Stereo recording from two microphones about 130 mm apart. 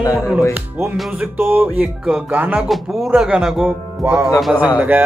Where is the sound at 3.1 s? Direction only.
5° right (ahead or behind).